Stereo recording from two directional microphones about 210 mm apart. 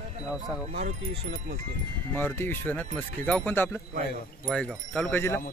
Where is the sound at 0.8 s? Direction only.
35° right (ahead or behind).